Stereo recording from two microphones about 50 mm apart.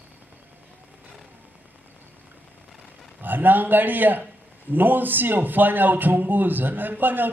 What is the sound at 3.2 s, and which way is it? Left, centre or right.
A man's voice, right.